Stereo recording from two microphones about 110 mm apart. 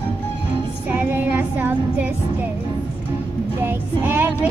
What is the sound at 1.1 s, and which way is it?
Child singing, 15° right (ahead or behind).